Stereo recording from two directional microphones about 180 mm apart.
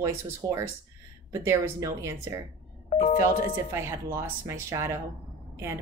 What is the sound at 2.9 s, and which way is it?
Doorbell, 40° left (ahead or behind).